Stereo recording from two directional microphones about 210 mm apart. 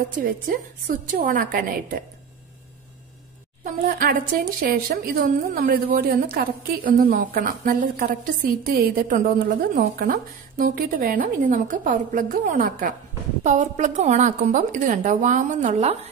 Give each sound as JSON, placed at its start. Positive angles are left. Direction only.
{"t": 0.2, "sound": "a woman's voice", "side_deg": -40}
{"t": 3.8, "sound": "a woman's voice", "side_deg": -40}